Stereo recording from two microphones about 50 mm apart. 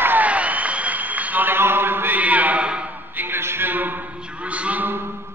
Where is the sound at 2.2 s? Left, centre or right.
Right.